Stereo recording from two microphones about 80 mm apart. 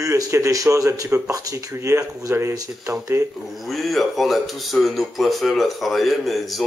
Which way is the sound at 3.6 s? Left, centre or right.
Centre.